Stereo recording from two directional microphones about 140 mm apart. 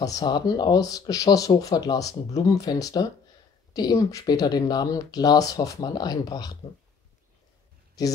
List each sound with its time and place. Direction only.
0.0 s speech: 30° left (ahead or behind)